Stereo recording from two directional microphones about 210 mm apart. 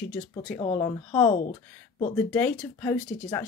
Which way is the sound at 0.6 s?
20° left (ahead or behind).